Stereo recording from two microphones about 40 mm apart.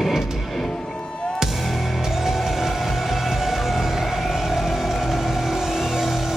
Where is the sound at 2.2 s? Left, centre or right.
Centre.